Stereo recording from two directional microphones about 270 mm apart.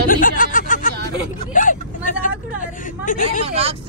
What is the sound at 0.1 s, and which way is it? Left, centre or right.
Snicker, left.